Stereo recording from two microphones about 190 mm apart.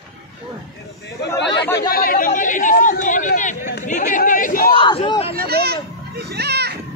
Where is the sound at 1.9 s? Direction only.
50° left (ahead or behind).